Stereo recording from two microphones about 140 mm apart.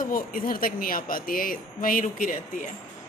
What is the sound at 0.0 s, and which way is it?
A woman's voice, 85° left.